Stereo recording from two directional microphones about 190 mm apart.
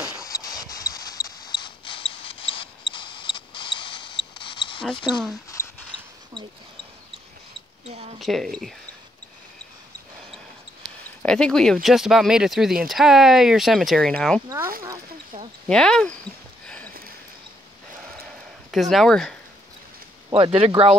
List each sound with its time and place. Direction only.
0.2 s a sound: 20° left (ahead or behind)
5.1 s speech: 5° left (ahead or behind)
7.9 s speech: 30° right (ahead or behind)
8.2 s speech: centre (ahead or behind)
11.2 s speech: 5° left (ahead or behind)
15.7 s speech: 5° left (ahead or behind)
16.6 s a sound: 5° left (ahead or behind)
18.7 s speech: centre (ahead or behind)
20.2 s speech: 25° right (ahead or behind)